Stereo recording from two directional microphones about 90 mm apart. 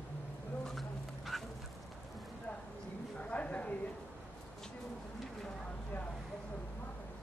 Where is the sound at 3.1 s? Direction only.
15° left (ahead or behind).